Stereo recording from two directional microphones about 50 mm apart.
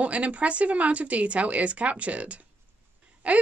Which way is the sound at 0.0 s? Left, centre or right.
Right.